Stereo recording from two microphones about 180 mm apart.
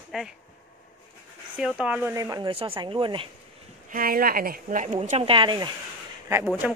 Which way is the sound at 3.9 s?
55° right (ahead or behind).